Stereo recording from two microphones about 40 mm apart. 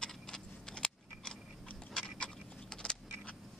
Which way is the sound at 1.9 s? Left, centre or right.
Left.